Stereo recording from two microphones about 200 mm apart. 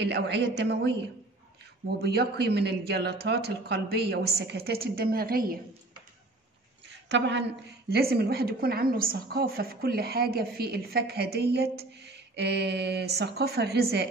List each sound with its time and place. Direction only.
0.0 s a woman's voice: 60° right (ahead or behind)
6.9 s a sound: 60° right (ahead or behind)
7.9 s a woman's voice: 50° right (ahead or behind)